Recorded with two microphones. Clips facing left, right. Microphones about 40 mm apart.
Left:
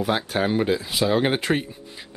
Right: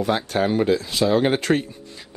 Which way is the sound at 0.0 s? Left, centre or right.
Centre.